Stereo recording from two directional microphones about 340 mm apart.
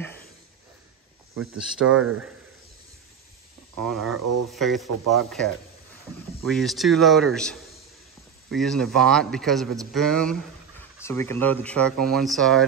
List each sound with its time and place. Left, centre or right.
1.6 s speech: centre
1.9 s speech: right
3.8 s speech: centre